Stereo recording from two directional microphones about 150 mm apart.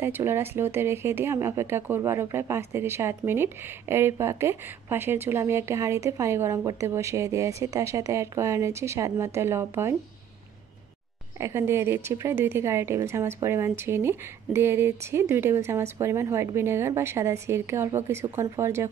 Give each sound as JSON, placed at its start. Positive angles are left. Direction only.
{"t": 0.0, "sound": "speech", "side_deg": -15}
{"t": 11.3, "sound": "speech", "side_deg": -20}